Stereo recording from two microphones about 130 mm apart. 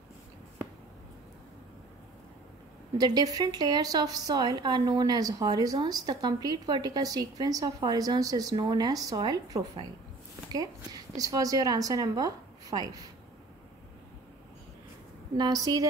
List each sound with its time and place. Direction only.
3.0 s a woman's voice: 30° right (ahead or behind)
15.3 s a woman's voice: 30° right (ahead or behind)